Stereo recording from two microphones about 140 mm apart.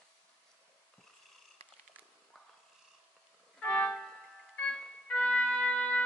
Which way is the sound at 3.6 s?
10° left (ahead or behind).